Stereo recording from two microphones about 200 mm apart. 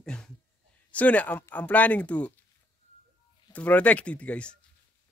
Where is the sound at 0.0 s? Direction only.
5° left (ahead or behind).